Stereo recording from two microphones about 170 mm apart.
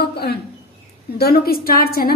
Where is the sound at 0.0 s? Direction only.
70° left (ahead or behind).